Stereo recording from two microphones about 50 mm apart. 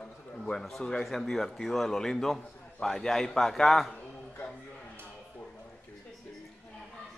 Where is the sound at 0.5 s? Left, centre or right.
Centre.